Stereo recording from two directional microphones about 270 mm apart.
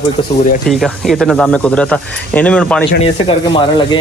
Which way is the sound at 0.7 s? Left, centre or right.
Centre.